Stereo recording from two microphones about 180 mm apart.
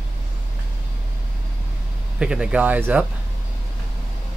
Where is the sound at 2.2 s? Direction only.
5° right (ahead or behind).